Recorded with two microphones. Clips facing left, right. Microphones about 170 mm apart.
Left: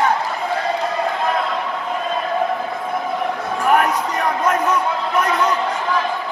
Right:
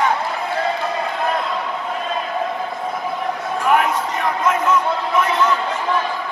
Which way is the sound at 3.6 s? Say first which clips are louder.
Left 1 dB; 40° left (ahead or behind).